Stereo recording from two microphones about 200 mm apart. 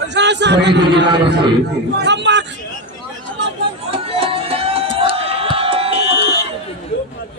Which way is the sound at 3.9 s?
30° right (ahead or behind).